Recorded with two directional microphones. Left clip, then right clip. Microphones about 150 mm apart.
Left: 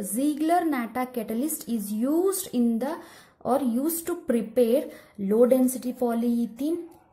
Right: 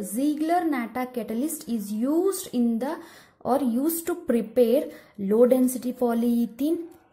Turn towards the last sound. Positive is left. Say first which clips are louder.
# right 2 dB
turn(degrees=-15)  # may be behind; listen again after turning